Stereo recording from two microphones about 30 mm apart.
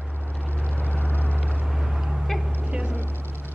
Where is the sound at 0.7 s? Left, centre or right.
Left.